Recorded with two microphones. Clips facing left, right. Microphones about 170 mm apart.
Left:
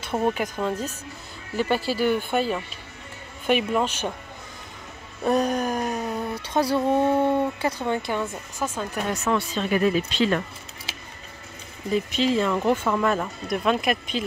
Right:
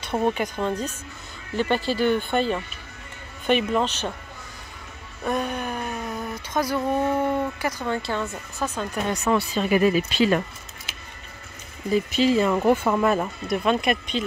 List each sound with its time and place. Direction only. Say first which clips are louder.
0.0 s speech: right 1 dB; 5° left (ahead or behind)
5.2 s speech: left 4 dB; 35° left (ahead or behind); by 10.4 s 10° right (ahead or behind)
11.9 s speech: right 2 dB; 5° right (ahead or behind)